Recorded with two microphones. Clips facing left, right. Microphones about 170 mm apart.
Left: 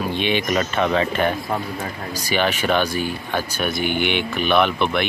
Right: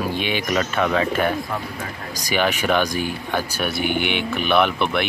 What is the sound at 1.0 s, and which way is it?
Speech, 10° right (ahead or behind).